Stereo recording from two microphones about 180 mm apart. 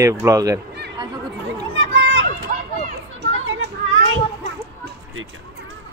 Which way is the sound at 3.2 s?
75° right (ahead or behind).